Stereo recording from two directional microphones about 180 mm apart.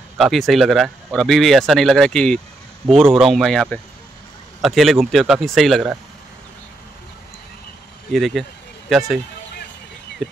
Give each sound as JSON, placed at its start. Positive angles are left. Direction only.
{"t": 0.2, "sound": "speech", "side_deg": 0}
{"t": 2.8, "sound": "speech", "side_deg": -30}
{"t": 3.2, "sound": "speech", "side_deg": 0}
{"t": 8.1, "sound": "speech", "side_deg": 0}